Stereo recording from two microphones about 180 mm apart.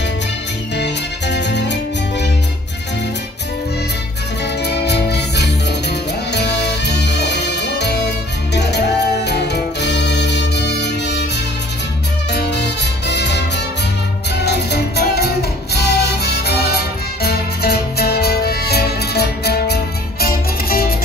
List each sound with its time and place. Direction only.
0.7 s music: 75° left (ahead or behind)
4.8 s music: 65° left (ahead or behind)
12.3 s music: 70° left (ahead or behind)
14.4 s music: 65° left (ahead or behind)